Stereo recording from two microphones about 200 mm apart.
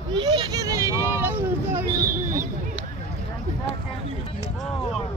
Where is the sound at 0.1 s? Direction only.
20° right (ahead or behind).